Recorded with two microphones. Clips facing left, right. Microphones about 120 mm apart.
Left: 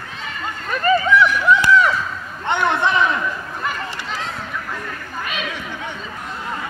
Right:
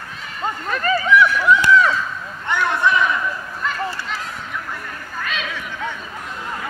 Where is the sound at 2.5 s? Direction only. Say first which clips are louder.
Left 1 dB; 25° left (ahead or behind).